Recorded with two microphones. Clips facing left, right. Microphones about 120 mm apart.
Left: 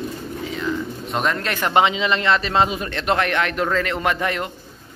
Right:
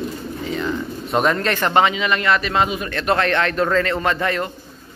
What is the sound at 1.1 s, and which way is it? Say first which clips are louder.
A man's voice: right 4 dB; centre (ahead or behind).